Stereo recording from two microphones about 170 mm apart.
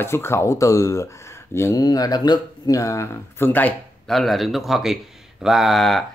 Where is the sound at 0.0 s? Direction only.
15° left (ahead or behind).